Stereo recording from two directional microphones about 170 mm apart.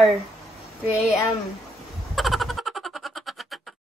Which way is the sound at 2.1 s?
Centre (ahead or behind).